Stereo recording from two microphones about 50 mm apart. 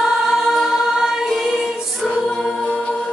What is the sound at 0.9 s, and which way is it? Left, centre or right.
Music, centre.